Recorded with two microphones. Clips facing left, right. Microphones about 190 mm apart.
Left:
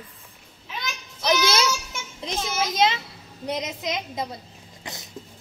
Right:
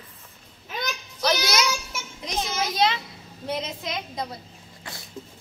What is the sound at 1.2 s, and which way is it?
Music, 25° left (ahead or behind).